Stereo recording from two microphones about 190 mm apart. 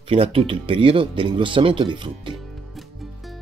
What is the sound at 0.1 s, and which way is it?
Speech, 30° right (ahead or behind).